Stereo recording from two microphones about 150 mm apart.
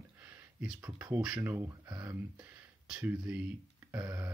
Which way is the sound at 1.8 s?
25° right (ahead or behind).